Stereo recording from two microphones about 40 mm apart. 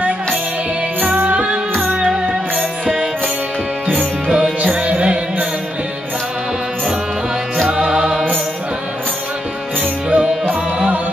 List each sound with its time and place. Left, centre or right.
1.0 s music: right
2.0 s music: centre
3.8 s music: right
7.6 s music: centre
10.0 s music: right